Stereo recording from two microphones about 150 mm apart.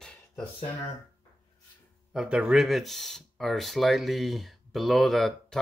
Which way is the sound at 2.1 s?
5° right (ahead or behind).